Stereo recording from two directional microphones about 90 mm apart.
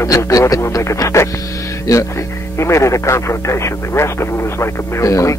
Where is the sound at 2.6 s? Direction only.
35° left (ahead or behind).